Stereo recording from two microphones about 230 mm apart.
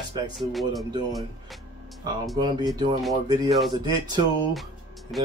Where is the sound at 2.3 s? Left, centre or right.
Centre.